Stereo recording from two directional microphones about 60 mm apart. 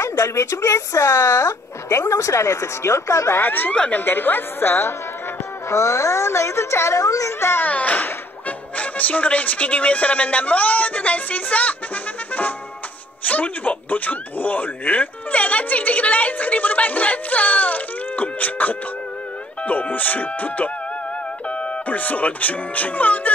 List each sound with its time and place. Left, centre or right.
0.0 s speech: left
3.3 s a woman's voice: left
5.7 s speech: left
7.0 s speech: left
7.6 s speech: left
13.2 s speech: left